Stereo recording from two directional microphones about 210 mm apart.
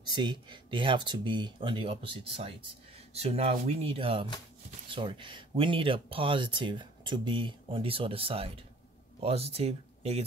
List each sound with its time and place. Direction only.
0.0 s speech: 20° right (ahead or behind)